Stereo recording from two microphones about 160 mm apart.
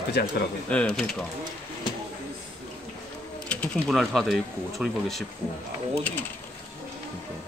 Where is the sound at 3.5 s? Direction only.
5° left (ahead or behind).